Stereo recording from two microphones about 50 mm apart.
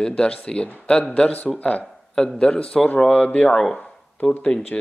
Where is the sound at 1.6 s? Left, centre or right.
Left.